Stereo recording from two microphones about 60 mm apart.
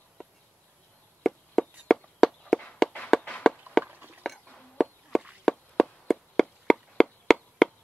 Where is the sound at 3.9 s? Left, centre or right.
Right.